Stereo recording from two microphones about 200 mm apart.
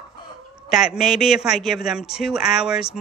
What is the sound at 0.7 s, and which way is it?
Speech, centre (ahead or behind).